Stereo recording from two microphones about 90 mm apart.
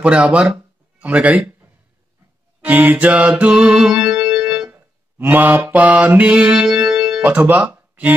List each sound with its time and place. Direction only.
0.0 s speech: 15° right (ahead or behind)
2.6 s music: 20° right (ahead or behind)
4.6 s mantra: 20° right (ahead or behind)
7.2 s speech: 20° right (ahead or behind)